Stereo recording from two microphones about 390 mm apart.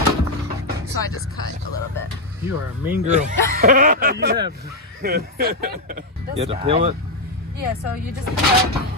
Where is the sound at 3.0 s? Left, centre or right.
Centre.